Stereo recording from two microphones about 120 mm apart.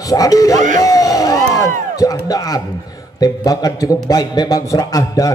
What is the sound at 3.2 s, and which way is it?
A man's voice, 30° left (ahead or behind).